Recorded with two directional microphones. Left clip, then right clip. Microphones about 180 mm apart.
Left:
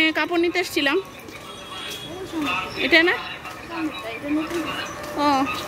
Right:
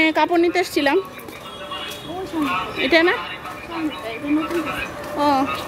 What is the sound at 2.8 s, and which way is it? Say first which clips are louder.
Speech: right 1 dB; 10° right (ahead or behind).